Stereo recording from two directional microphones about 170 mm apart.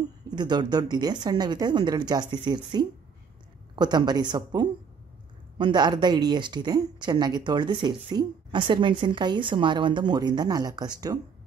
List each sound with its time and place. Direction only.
0.3 s speech: 25° right (ahead or behind)
5.6 s speech: 25° right (ahead or behind)